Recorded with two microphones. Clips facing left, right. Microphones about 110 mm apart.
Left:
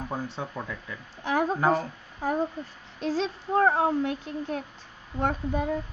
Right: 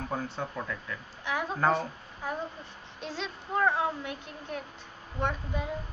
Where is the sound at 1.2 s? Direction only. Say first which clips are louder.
Left 7 dB; 40° left (ahead or behind).